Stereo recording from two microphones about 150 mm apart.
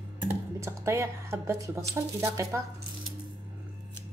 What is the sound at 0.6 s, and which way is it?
Speech, 20° right (ahead or behind).